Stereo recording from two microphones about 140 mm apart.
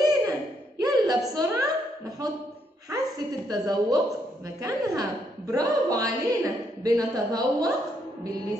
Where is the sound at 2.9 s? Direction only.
25° right (ahead or behind).